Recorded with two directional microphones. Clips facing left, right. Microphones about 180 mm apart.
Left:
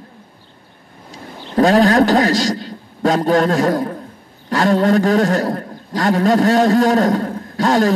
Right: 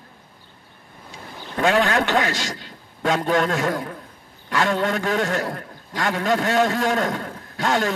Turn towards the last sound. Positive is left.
turn(degrees=35)  # may be behind; listen again after turning